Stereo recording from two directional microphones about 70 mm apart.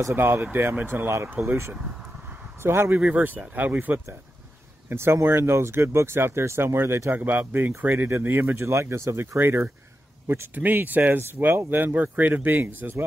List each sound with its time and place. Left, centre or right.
0.1 s speech: right
3.0 s speech: right
4.8 s speech: right
8.6 s speech: right
10.5 s speech: right